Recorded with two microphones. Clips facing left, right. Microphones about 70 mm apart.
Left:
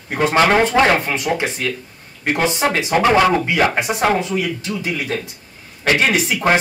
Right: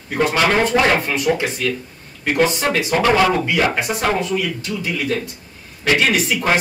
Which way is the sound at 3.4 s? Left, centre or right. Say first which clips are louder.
Left 1 dB; left.